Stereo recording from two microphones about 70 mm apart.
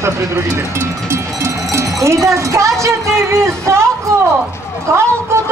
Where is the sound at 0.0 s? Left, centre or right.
Right.